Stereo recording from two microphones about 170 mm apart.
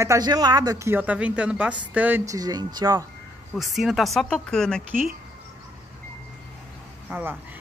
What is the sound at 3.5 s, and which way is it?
Speech, centre (ahead or behind).